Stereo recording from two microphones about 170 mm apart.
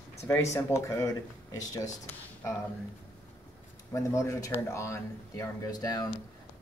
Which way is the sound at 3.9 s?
15° left (ahead or behind).